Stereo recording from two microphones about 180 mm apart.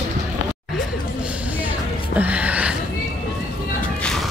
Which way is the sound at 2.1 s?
10° right (ahead or behind).